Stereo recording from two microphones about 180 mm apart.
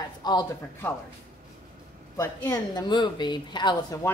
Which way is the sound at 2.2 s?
20° left (ahead or behind).